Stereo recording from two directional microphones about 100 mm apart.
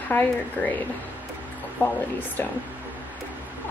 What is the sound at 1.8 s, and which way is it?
Speech, 20° left (ahead or behind).